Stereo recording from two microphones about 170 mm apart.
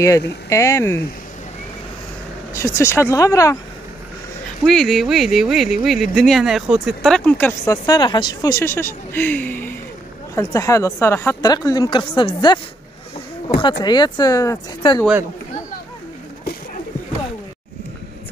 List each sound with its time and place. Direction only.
0.0 s speech: 20° left (ahead or behind)
2.5 s speech: 15° left (ahead or behind)
4.6 s speech: centre (ahead or behind)
7.6 s speech: 20° left (ahead or behind)